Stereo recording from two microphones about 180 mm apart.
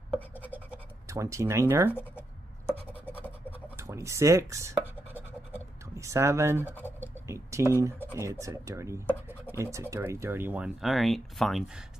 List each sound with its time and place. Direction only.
0.5 s scratch: 15° right (ahead or behind)
2.0 s a sound: 10° left (ahead or behind)
3.4 s speech: 10° right (ahead or behind)
5.9 s speech: 15° right (ahead or behind)
6.7 s speech: 10° left (ahead or behind)
7.2 s a sound: 15° right (ahead or behind)
7.7 s speech: 15° right (ahead or behind)